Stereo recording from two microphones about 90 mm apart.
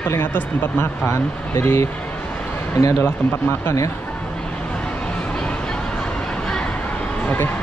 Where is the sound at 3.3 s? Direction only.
30° left (ahead or behind).